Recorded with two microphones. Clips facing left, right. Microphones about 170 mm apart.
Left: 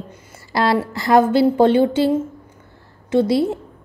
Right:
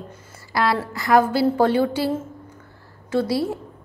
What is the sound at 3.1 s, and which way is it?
Speech, 20° left (ahead or behind).